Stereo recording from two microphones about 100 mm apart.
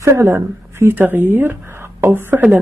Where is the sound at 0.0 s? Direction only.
30° right (ahead or behind).